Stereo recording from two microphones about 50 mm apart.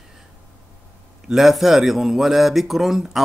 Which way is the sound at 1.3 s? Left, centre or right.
Centre.